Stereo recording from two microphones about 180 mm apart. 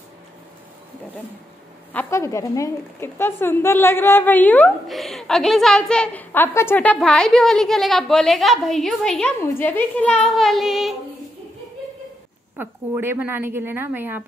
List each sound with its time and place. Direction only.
2.0 s a woman's voice: 15° left (ahead or behind); by 11.0 s centre (ahead or behind)
12.5 s a woman's voice: 10° right (ahead or behind)